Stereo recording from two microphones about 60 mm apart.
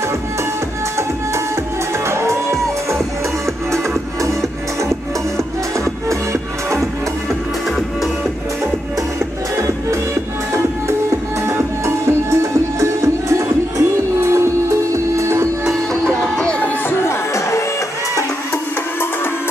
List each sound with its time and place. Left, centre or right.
2.0 s music: right
6.0 s music: right
10.5 s music: right
16.3 s music: centre
17.0 s music: left